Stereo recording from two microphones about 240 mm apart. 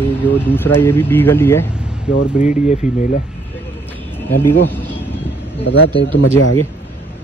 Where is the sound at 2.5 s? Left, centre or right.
Left.